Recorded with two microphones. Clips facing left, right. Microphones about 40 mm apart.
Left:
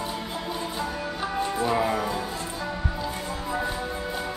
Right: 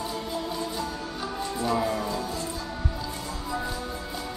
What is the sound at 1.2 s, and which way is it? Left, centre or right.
Music, left.